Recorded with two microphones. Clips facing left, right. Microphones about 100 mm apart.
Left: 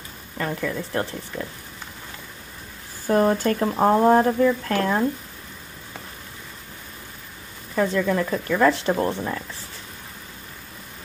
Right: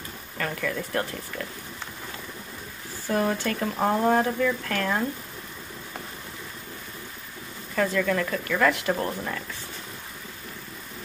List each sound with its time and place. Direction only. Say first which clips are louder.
0.4 s speech: left 3 dB; 20° left (ahead or behind)
3.1 s speech: left 6 dB; 40° left (ahead or behind)
7.7 s speech: left 3 dB; 20° left (ahead or behind)